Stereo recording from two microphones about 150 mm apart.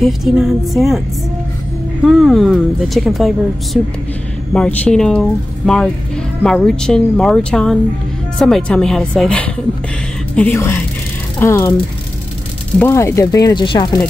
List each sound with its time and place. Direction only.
0.0 s speech: centre (ahead or behind)
2.0 s a woman's voice: centre (ahead or behind); by 11.7 s 15° left (ahead or behind)
12.7 s speech: 15° left (ahead or behind)